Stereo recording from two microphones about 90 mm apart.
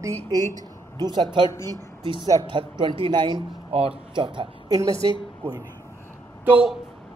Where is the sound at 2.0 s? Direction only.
70° right (ahead or behind).